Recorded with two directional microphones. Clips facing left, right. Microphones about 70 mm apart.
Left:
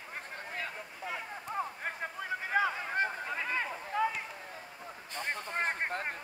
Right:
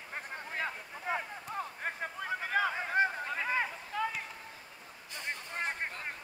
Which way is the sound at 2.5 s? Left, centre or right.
Centre.